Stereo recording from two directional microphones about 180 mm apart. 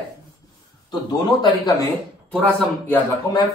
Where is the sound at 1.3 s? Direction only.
20° left (ahead or behind).